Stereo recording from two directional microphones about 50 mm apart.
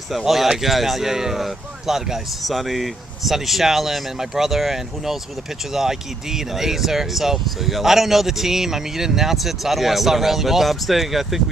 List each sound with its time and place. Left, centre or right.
0.1 s speech: centre